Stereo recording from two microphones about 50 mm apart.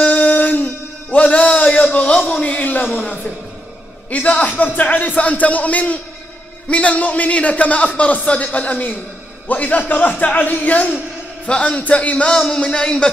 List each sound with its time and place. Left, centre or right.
0.0 s a sound: left
1.1 s a man's voice: left
4.1 s a man's voice: left
12.3 s a man's voice: centre